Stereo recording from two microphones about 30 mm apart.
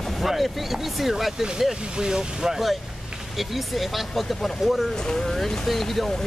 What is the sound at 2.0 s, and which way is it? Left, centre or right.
Speech, right.